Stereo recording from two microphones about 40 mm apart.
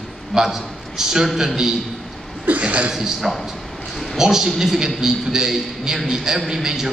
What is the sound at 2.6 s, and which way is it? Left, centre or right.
Speech, right.